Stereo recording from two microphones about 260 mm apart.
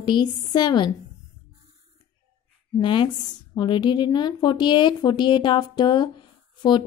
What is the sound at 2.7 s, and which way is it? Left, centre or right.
A woman's voice, centre.